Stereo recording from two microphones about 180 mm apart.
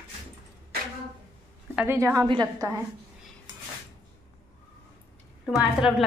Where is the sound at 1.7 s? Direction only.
10° right (ahead or behind).